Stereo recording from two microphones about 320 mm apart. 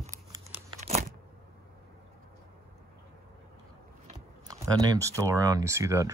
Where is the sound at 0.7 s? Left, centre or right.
Right.